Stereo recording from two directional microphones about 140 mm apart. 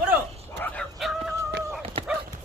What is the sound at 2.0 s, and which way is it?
Bow-wow, 35° right (ahead or behind).